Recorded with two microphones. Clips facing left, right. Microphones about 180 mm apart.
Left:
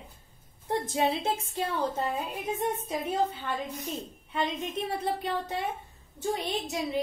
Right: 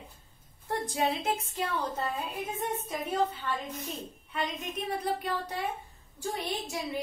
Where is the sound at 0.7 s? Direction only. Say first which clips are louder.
Left 3 dB; 25° left (ahead or behind).